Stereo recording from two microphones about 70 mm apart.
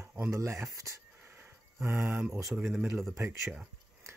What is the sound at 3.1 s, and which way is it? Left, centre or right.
Speech, right.